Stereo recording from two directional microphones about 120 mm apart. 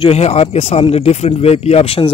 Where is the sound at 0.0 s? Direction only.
60° left (ahead or behind).